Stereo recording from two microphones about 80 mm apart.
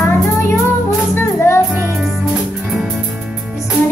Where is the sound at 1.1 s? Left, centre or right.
Left.